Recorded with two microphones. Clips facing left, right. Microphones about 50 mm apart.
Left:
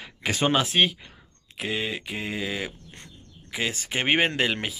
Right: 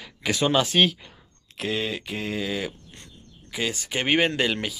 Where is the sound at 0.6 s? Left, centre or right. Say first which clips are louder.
Right 2 dB; centre.